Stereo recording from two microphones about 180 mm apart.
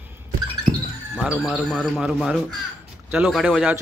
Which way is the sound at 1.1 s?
5° right (ahead or behind).